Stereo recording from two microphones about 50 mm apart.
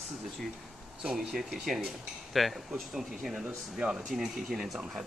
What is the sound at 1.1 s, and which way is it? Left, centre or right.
Speech, centre.